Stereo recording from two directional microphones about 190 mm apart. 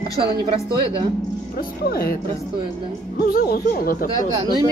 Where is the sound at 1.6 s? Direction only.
55° left (ahead or behind).